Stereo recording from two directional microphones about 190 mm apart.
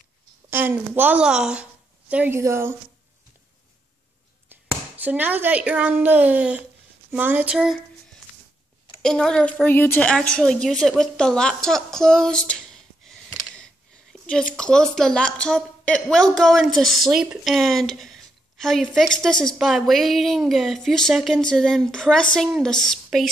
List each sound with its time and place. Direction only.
0.5 s a woman's voice: 10° right (ahead or behind)
4.5 s speech: 10° right (ahead or behind)
9.0 s a woman's voice: 5° left (ahead or behind)
14.1 s a sound: centre (ahead or behind)
14.6 s a woman's voice: 5° left (ahead or behind)